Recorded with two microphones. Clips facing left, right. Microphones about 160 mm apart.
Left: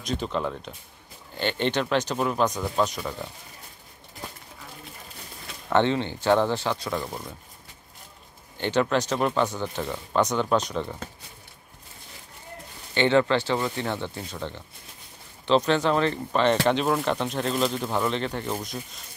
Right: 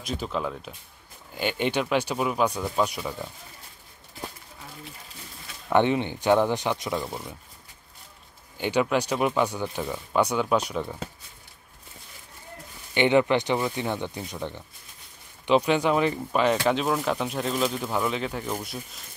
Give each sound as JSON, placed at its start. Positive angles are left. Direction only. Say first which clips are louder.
{"t": 0.0, "sound": "speech", "louder": "left 2 dB", "side_deg": -5}
{"t": 5.7, "sound": "speech", "louder": "right 1 dB", "side_deg": -15}
{"t": 8.5, "sound": "speech", "louder": "even", "side_deg": -10}
{"t": 12.9, "sound": "speech", "louder": "even", "side_deg": -15}